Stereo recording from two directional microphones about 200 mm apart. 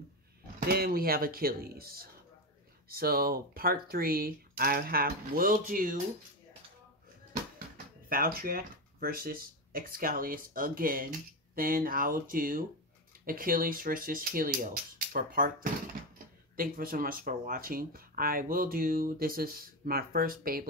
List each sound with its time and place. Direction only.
0.6 s speech: 50° right (ahead or behind)
8.1 s speech: 45° right (ahead or behind)